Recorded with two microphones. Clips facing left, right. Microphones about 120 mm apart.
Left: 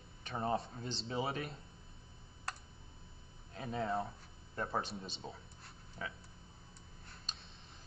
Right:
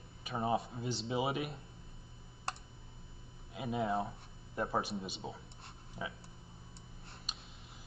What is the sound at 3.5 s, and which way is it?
Speech, 10° right (ahead or behind).